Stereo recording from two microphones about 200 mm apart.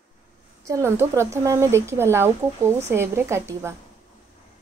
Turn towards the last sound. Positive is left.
turn(degrees=-15)  # may be behind; listen again after turning